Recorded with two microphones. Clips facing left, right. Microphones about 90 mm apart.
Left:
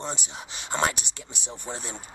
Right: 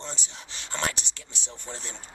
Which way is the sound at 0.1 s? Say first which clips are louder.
Left 5 dB; 15° left (ahead or behind).